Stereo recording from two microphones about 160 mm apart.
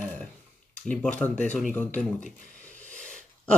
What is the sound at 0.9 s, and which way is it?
Speech, 10° left (ahead or behind).